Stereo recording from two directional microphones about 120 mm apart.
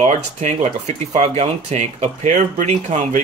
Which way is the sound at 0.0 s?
80° right.